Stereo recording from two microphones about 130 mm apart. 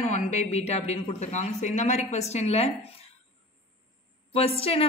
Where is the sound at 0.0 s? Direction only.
65° left (ahead or behind).